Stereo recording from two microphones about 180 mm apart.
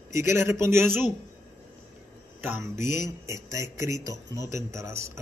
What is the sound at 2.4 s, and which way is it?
A man's voice, 15° right (ahead or behind).